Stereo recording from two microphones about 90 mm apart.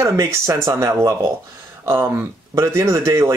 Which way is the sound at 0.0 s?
35° right (ahead or behind).